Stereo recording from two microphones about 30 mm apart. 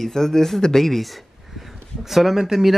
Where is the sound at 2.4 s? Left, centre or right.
Centre.